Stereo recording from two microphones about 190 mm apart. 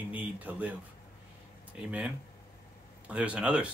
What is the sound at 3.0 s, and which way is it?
Speech, 5° right (ahead or behind).